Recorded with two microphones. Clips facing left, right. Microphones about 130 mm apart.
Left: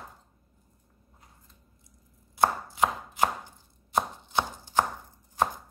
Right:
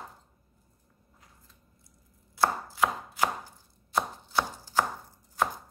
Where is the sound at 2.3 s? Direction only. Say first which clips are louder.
Left 2 dB; 20° left (ahead or behind).